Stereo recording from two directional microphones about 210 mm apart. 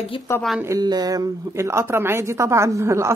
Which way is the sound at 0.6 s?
15° right (ahead or behind).